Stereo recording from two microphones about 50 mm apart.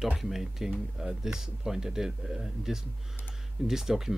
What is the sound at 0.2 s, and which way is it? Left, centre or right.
Speech, centre.